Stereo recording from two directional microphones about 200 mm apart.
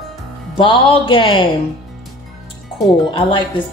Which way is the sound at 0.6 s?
25° left (ahead or behind).